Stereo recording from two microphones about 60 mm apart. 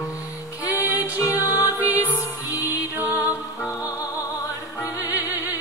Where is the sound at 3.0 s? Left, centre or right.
Right.